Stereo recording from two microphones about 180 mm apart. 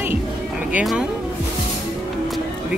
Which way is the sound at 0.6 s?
5° right (ahead or behind).